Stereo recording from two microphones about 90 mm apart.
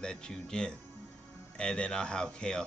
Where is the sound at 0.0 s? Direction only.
10° left (ahead or behind).